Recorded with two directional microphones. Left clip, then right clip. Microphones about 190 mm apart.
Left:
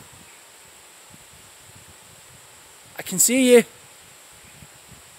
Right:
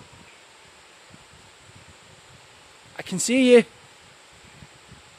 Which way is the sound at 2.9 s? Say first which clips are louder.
Left 2 dB; 10° right (ahead or behind).